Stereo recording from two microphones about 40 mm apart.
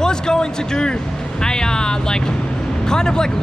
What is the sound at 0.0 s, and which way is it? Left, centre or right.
Speech, centre.